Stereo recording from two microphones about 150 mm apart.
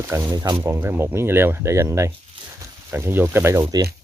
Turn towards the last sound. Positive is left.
turn(degrees=-20)  # may be behind; listen again after turning